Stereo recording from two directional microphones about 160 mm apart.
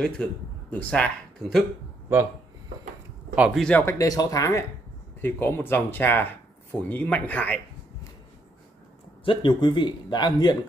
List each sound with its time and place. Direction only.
0.0 s speech: 5° left (ahead or behind)
3.3 s speech: 5° right (ahead or behind)
3.6 s speech: 10° left (ahead or behind)
4.0 s speech: 20° left (ahead or behind)
9.2 s speech: 30° left (ahead or behind)